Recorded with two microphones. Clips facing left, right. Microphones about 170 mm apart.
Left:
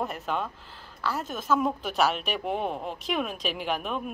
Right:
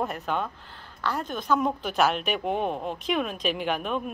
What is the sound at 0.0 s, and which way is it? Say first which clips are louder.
A woman's voice: right 2 dB; centre (ahead or behind).